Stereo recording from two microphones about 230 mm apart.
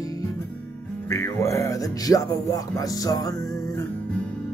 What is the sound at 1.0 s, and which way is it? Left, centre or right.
Speech, centre.